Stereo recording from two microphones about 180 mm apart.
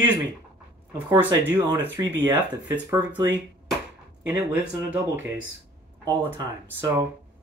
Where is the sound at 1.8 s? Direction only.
10° right (ahead or behind).